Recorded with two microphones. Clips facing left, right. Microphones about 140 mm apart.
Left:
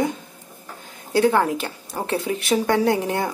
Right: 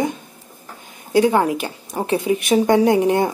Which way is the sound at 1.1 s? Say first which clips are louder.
Right 3 dB; 15° right (ahead or behind).